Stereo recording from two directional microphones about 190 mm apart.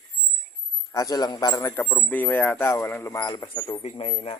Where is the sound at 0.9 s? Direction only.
20° left (ahead or behind).